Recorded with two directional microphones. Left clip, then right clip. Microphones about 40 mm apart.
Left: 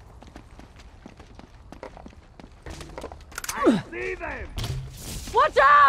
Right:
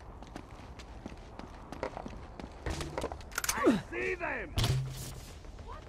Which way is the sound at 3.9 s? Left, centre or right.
Right.